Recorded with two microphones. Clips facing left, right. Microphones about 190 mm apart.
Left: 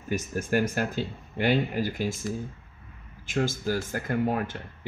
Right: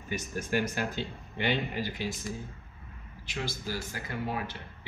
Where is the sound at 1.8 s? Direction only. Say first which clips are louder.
Left 5 dB; 50° left (ahead or behind).